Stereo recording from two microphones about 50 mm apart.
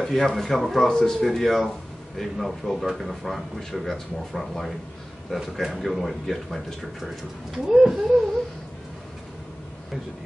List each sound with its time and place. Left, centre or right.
0.0 s a man's voice: centre
7.5 s speech: centre